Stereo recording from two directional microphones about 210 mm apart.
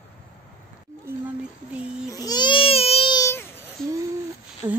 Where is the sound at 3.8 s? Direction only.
Centre (ahead or behind).